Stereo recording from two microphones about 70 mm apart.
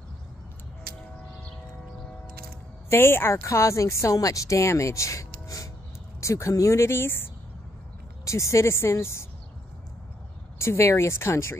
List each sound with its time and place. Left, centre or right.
2.9 s speech: left
8.3 s speech: left
10.6 s speech: left